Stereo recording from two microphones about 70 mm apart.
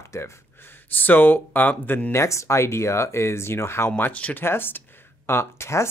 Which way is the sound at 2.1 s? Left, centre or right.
Left.